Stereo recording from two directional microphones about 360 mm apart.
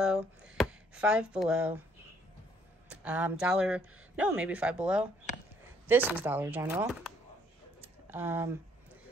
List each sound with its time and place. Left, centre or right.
0.0 s speech: centre
2.9 s speech: centre
7.8 s a sound: centre